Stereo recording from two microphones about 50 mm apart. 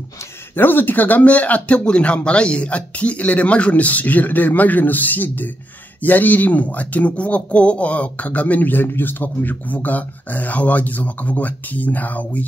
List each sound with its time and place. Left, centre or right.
0.6 s speech: left